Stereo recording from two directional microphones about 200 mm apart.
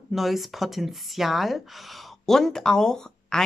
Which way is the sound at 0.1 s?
Centre (ahead or behind).